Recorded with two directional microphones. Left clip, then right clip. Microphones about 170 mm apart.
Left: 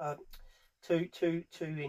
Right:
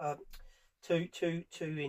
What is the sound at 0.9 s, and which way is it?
Speech, 20° left (ahead or behind).